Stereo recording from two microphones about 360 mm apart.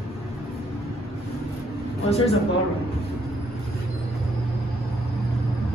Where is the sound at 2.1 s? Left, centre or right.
Centre.